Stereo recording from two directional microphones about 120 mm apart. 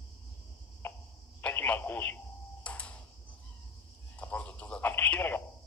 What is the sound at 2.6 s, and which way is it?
Tick-tock, 10° left (ahead or behind).